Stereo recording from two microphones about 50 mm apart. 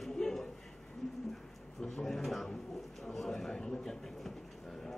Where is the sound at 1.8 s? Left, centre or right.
Centre.